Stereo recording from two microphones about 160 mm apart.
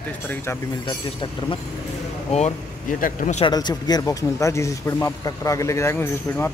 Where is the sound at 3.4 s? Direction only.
25° left (ahead or behind).